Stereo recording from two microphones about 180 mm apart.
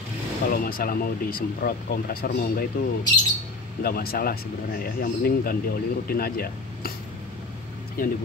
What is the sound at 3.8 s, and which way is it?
Speech, 55° left (ahead or behind).